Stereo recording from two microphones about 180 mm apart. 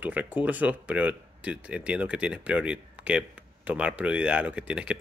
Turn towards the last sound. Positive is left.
turn(degrees=-5)  # may be behind; listen again after turning